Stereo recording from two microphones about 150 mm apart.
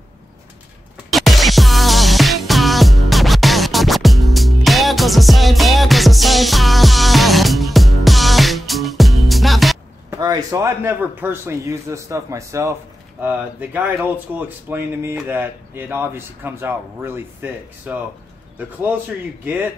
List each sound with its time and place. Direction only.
1.1 s music: centre (ahead or behind)
10.2 s a man's voice: 25° right (ahead or behind)
19.4 s speech: 10° right (ahead or behind)